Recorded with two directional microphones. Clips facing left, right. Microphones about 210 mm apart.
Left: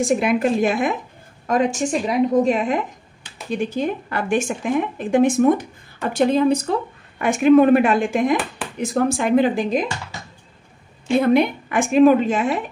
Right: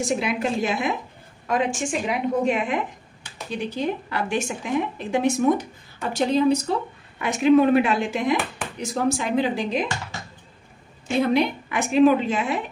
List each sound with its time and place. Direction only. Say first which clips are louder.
0.0 s a woman's voice: left 6 dB; 50° left (ahead or behind)
1.5 s a woman's voice: left 4 dB; 40° left (ahead or behind)
11.1 s a woman's voice: left 4 dB; 50° left (ahead or behind)